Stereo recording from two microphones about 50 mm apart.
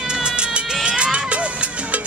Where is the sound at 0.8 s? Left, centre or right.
Centre.